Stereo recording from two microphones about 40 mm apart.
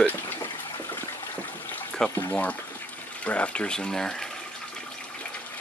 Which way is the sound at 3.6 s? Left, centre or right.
Centre.